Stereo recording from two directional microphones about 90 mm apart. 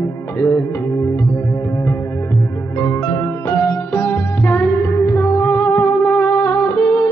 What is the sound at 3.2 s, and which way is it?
Music, 25° left (ahead or behind).